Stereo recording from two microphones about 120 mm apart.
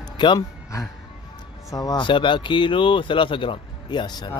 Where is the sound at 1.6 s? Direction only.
30° left (ahead or behind).